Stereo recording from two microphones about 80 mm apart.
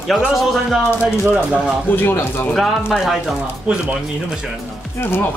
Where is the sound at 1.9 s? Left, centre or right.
Left.